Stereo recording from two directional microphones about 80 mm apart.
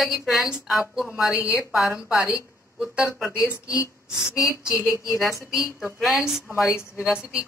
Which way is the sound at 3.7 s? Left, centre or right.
Left.